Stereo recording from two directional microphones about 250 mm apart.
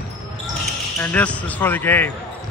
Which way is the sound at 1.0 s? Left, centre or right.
Centre.